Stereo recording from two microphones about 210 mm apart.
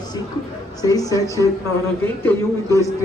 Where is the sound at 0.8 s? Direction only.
15° left (ahead or behind).